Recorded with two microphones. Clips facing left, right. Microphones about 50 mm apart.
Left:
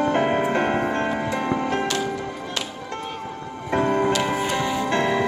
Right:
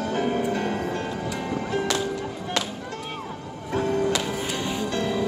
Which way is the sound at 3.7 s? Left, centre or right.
Left.